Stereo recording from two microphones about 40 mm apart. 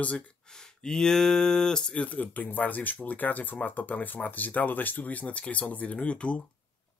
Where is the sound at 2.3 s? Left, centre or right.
Left.